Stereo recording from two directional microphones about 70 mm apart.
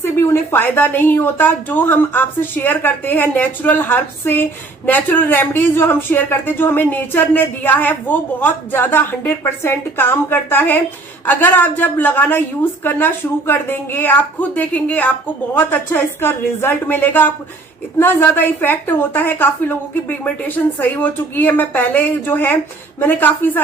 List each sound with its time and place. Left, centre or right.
0.0 s a woman's voice: left